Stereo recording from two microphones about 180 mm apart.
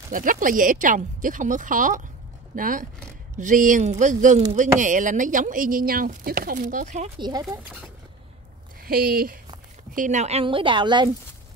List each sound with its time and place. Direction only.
0.1 s speech: 50° right (ahead or behind)
7.2 s a woman's voice: 25° right (ahead or behind)
8.8 s speech: 55° right (ahead or behind)
9.9 s a woman's voice: 45° right (ahead or behind); by 11.1 s 25° right (ahead or behind)